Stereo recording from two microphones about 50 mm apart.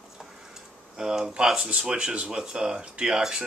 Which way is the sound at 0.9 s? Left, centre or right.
Centre.